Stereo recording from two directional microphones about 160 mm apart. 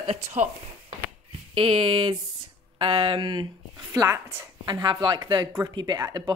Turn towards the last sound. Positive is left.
turn(degrees=-25)  # may be behind; listen again after turning